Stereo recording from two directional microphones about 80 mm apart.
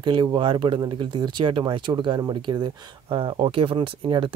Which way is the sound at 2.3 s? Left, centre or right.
Right.